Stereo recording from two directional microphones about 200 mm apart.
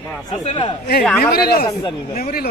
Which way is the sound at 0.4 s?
35° left (ahead or behind).